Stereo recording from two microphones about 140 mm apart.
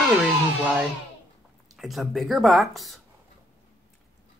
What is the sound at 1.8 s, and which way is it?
Speech, centre (ahead or behind).